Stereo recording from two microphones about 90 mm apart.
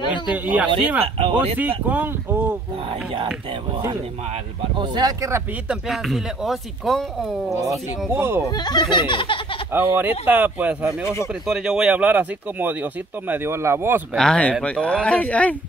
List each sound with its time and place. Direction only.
0.3 s speech: 15° right (ahead or behind)
1.0 s speech: 90° right
1.6 s speech: 20° right (ahead or behind)
4.7 s speech: 50° right (ahead or behind)
5.7 s speech: centre (ahead or behind)
7.6 s speech: 30° right (ahead or behind)
8.5 s speech: 50° left (ahead or behind); by 9.4 s 65° left (ahead or behind)
9.7 s speech: 25° right (ahead or behind)
11.4 s speech: 5° right (ahead or behind); by 14.0 s 25° right (ahead or behind)
14.1 s speech: 10° left (ahead or behind)